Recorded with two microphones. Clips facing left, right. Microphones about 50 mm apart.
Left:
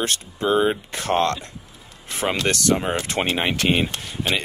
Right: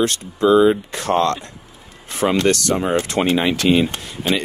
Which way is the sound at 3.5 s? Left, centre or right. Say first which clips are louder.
Right 4 dB; left.